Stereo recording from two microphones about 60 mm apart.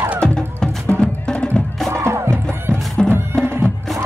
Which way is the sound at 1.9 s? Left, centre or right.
Right.